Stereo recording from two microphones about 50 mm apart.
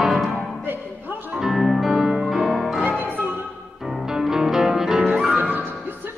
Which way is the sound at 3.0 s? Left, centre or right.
Right.